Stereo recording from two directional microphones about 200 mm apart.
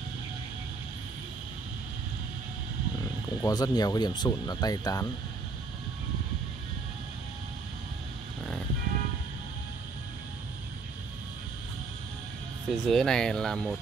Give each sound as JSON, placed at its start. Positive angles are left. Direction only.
{"t": 3.4, "sound": "speech", "side_deg": 20}
{"t": 12.6, "sound": "speech", "side_deg": 0}